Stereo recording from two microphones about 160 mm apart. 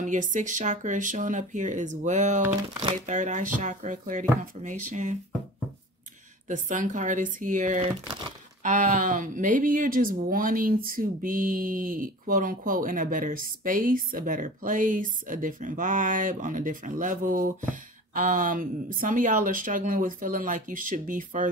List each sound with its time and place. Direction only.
0.0 s speech: 55° right (ahead or behind)
6.4 s speech: 55° right (ahead or behind)